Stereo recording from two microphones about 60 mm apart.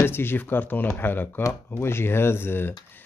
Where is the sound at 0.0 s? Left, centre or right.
Left.